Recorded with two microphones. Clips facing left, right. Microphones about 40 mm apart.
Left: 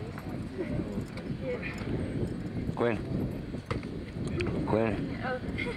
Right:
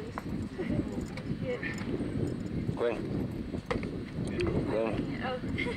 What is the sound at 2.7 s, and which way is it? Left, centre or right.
Speech, left.